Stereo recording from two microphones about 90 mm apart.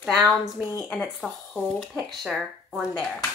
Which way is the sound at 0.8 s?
5° right (ahead or behind).